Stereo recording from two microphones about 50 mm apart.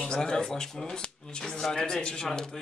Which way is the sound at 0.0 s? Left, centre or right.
Centre.